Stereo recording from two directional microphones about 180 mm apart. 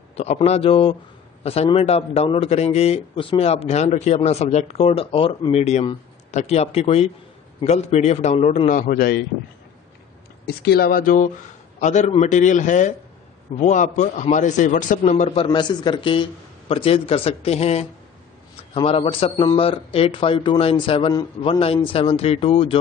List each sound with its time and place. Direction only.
0.1 s a man's voice: 35° left (ahead or behind); by 9.2 s 55° left (ahead or behind)
10.4 s a man's voice: 60° left (ahead or behind); by 15.4 s 40° left (ahead or behind)
15.4 s a man's voice: 25° left (ahead or behind)